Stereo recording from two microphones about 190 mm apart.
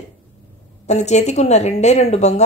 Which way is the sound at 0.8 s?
35° left (ahead or behind).